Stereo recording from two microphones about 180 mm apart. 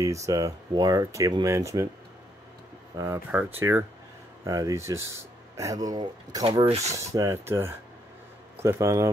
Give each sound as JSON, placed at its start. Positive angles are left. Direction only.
{"t": 0.0, "sound": "speech", "side_deg": -15}
{"t": 3.0, "sound": "speech", "side_deg": -10}
{"t": 6.4, "sound": "speech", "side_deg": -30}
{"t": 7.1, "sound": "speech", "side_deg": -15}